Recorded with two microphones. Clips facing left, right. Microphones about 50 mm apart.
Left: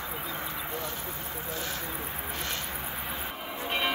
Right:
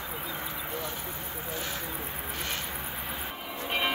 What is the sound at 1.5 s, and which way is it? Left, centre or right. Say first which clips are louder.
Speech: even; right.